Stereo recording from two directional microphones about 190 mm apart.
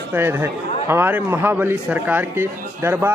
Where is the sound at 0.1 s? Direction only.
10° right (ahead or behind).